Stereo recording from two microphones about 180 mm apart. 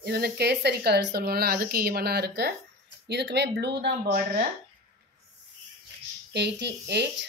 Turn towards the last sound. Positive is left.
turn(degrees=-70)  # may be behind; listen again after turning